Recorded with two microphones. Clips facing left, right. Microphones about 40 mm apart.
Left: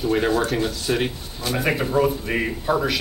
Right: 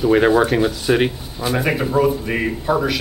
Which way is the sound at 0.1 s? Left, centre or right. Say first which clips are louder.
Right 6 dB; centre.